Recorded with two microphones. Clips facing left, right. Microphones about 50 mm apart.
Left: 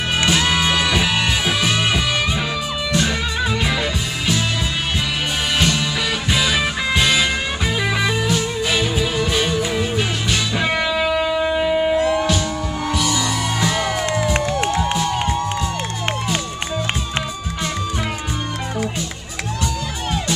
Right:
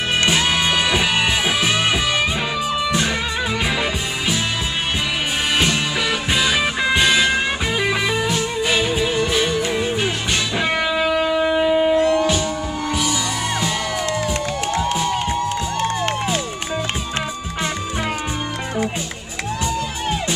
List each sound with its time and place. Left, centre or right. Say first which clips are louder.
0.2 s music: left 1 dB; centre
6.3 s music: even; centre
19.6 s music: right 2 dB; centre